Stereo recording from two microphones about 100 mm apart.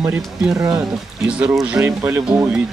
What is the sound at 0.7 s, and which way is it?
Speech, 10° right (ahead or behind).